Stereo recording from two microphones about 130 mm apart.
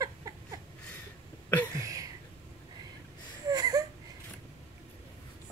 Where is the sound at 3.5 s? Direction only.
30° right (ahead or behind).